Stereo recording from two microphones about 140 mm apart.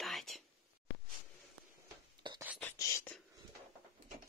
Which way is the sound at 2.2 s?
35° right (ahead or behind).